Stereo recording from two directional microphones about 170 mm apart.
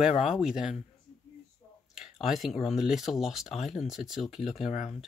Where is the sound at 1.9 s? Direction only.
Centre (ahead or behind).